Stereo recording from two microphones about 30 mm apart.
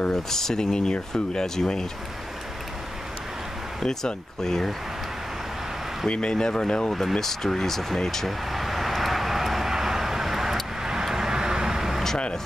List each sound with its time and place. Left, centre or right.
0.1 s speech: centre
3.8 s speech: centre
6.0 s speech: left
6.3 s speech: left
7.2 s speech: centre
8.3 s vehicle: centre